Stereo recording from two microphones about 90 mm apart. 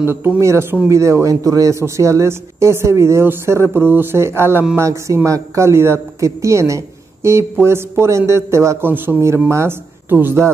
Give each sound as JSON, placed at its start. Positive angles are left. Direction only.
{"t": 0.0, "sound": "speech", "side_deg": -25}